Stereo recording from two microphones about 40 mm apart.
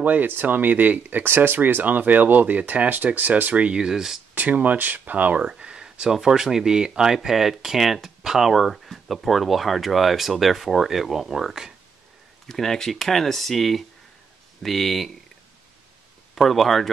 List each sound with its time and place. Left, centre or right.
0.0 s speech: right
1.2 s speech: right
3.7 s speech: centre
4.4 s speech: right
5.4 s speech: right
12.4 s speech: centre
16.3 s speech: centre